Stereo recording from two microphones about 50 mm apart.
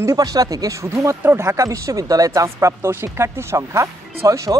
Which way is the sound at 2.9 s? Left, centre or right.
Right.